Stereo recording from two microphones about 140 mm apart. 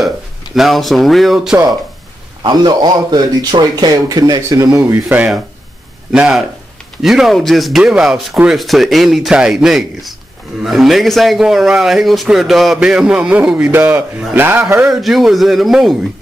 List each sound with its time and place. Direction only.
0.6 s a man's voice: centre (ahead or behind)
2.4 s a man's voice: 30° right (ahead or behind)
5.0 s a man's voice: 5° right (ahead or behind)